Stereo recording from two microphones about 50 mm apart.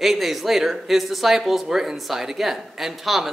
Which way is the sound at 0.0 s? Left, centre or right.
Centre.